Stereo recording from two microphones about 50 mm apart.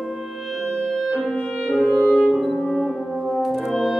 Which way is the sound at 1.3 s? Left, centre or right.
Centre.